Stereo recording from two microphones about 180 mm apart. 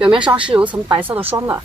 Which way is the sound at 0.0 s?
5° right (ahead or behind).